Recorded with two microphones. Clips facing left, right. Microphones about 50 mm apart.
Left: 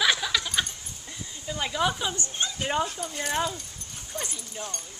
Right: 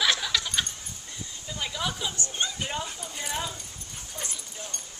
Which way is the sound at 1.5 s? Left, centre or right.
Centre.